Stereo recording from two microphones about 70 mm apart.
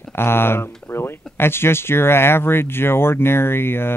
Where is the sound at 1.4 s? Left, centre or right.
Left.